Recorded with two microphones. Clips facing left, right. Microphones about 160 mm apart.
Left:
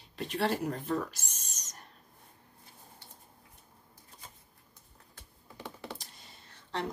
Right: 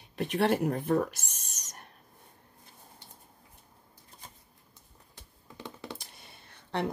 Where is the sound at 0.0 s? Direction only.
55° right (ahead or behind).